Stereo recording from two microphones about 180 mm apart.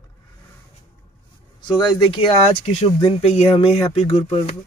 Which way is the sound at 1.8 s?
30° left (ahead or behind).